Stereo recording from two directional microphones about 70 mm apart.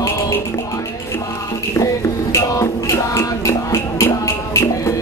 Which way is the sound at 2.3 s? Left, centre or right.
Left.